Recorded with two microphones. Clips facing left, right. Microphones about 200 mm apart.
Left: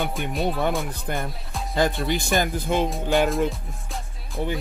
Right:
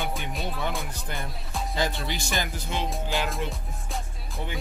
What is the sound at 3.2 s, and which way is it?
Music, centre (ahead or behind).